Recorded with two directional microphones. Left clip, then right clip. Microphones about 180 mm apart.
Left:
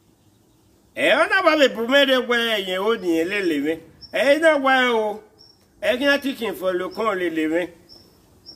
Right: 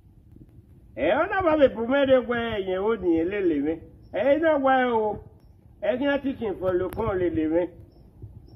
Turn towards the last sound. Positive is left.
turn(degrees=15)  # may be behind; listen again after turning